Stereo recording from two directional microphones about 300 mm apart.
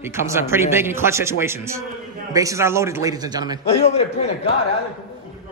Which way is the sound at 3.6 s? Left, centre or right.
Left.